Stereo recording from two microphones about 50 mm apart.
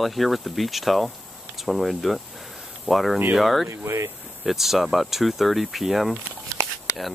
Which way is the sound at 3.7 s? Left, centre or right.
Right.